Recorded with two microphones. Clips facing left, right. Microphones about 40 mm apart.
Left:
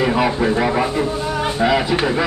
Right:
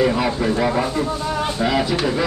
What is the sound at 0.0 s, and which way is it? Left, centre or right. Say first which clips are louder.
Speech: left 2 dB; centre.